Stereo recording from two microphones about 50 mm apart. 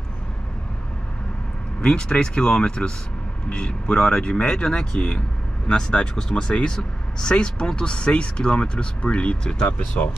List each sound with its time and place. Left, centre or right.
1.8 s speech: centre